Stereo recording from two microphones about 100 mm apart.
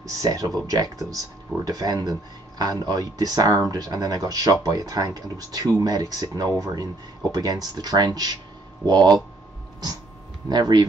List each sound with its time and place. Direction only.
0.2 s speech: 35° right (ahead or behind)
10.5 s speech: 45° right (ahead or behind)